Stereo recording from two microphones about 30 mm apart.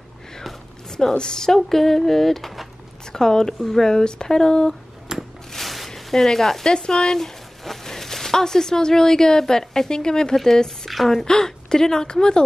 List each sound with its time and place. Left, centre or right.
0.8 s a sound: centre
1.1 s a woman's voice: left
5.1 s a sound: right
5.5 s a sound: centre
6.1 s speech: centre
6.6 s speech: left
7.2 s speech: centre; by 10.3 s left
10.3 s speech: centre
10.9 s a woman's voice: centre
11.2 s speech: left